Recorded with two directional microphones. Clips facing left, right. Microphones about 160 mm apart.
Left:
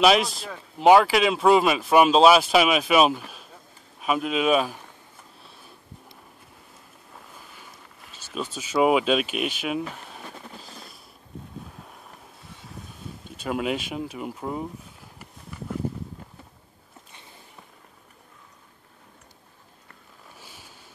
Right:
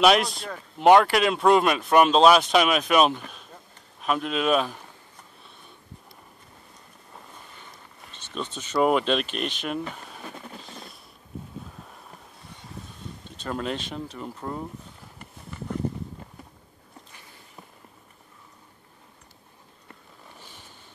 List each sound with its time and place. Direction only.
0.0 s speech: centre (ahead or behind)
5.4 s sniff: 5° left (ahead or behind)
7.5 s speech: 5° left (ahead or behind)
10.6 s a sound: centre (ahead or behind)
12.4 s vehicle: centre (ahead or behind)
13.4 s speech: 10° left (ahead or behind)
15.1 s horse: 5° left (ahead or behind)
20.3 s a sound: 5° left (ahead or behind)